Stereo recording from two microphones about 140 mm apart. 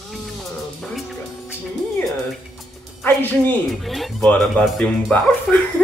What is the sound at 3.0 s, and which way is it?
Speech, 15° left (ahead or behind).